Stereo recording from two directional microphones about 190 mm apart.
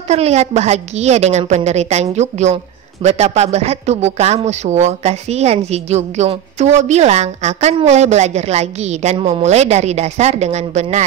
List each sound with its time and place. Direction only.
0.1 s a woman's voice: 35° right (ahead or behind)